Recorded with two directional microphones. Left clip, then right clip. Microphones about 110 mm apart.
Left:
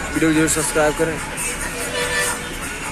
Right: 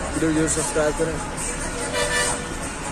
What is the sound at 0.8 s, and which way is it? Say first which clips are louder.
Speech: left 4 dB; 30° left (ahead or behind).